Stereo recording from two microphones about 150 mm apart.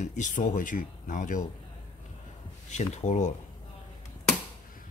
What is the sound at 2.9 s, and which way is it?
Speech, 50° left (ahead or behind).